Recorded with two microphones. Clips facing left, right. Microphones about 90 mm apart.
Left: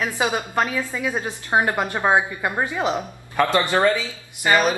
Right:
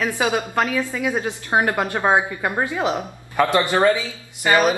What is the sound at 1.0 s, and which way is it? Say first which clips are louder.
Speech: right 3 dB; 15° right (ahead or behind).